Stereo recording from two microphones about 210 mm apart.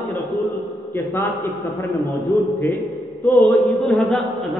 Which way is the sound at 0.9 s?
10° left (ahead or behind).